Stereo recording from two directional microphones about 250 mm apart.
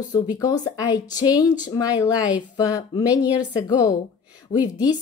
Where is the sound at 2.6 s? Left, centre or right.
Centre.